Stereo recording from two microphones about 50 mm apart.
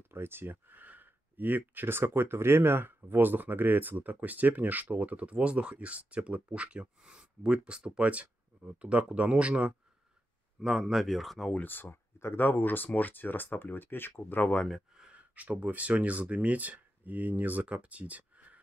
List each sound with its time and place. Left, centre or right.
0.1 s speech: right
10.6 s speech: centre
11.5 s speech: left
15.0 s speech: right